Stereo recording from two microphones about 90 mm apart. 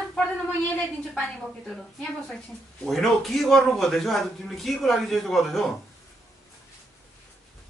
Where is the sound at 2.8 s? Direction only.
5° left (ahead or behind).